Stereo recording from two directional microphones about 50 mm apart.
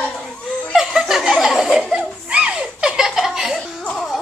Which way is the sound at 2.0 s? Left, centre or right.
Right.